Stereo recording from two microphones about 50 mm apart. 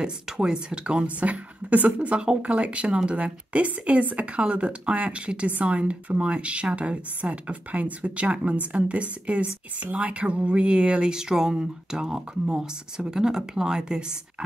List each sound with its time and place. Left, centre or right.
0.0 s a woman's voice: centre